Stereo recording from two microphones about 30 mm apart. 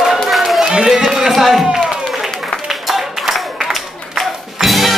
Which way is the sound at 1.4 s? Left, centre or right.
Centre.